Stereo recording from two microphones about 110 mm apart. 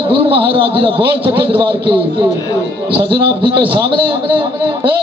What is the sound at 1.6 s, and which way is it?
A man's voice, 50° right (ahead or behind).